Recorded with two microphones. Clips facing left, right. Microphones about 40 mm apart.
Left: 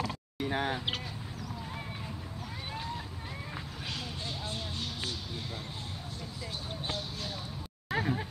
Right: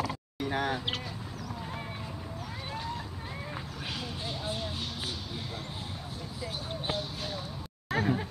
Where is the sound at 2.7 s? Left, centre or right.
Centre.